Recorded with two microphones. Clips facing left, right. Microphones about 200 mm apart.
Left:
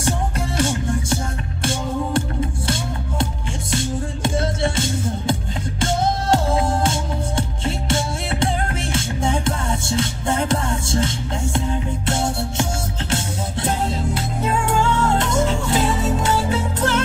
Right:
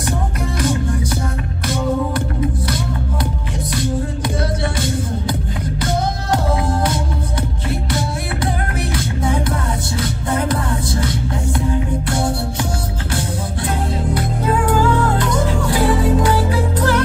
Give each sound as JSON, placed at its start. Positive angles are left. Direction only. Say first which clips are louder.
{"t": 0.6, "sound": "music", "louder": "right 2 dB", "side_deg": 25}
{"t": 6.3, "sound": "music", "louder": "right 2 dB", "side_deg": 25}
{"t": 13.7, "sound": "music", "louder": "right 1 dB", "side_deg": 25}